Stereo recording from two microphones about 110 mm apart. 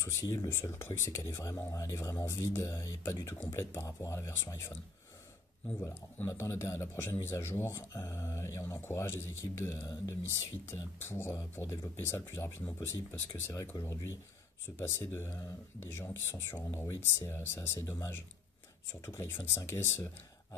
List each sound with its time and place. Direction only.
0.0 s speech: 30° left (ahead or behind)
6.2 s speech: 25° left (ahead or behind)
13.7 s speech: 40° left (ahead or behind)
14.8 s speech: 25° left (ahead or behind)